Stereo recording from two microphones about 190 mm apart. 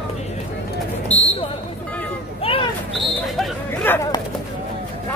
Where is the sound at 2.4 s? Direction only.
30° left (ahead or behind).